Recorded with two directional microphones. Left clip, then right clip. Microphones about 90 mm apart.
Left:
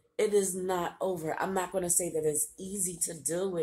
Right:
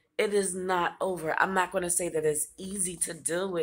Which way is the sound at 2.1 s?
Centre (ahead or behind).